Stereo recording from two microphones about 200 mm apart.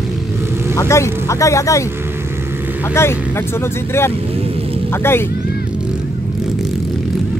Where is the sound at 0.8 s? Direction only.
15° left (ahead or behind).